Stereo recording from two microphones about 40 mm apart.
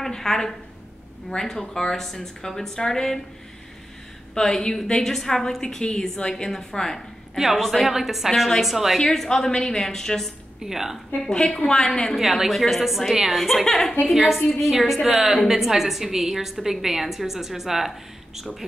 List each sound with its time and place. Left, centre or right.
0.0 s a woman's voice: centre
4.3 s a woman's voice: centre
7.3 s a woman's voice: centre
9.0 s a woman's voice: centre
10.6 s a woman's voice: centre
11.2 s a woman's voice: centre
12.2 s a woman's voice: centre
14.0 s a woman's voice: centre